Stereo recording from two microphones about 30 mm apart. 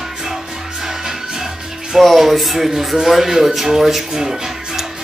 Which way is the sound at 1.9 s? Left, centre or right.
Centre.